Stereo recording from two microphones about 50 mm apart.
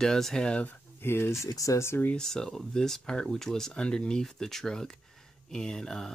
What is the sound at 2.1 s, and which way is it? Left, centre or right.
Speech, centre.